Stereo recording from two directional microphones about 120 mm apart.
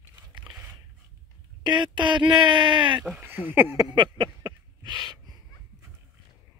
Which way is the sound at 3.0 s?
10° right (ahead or behind).